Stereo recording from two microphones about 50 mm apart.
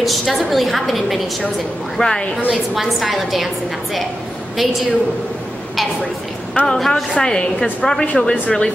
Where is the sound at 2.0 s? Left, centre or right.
Centre.